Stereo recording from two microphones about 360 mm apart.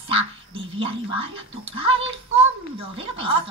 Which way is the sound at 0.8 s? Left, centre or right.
Centre.